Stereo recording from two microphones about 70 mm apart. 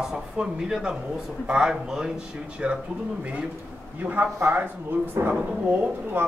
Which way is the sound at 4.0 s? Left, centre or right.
Right.